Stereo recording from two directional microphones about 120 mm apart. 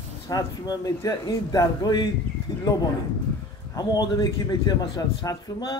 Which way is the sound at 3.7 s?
30° left (ahead or behind).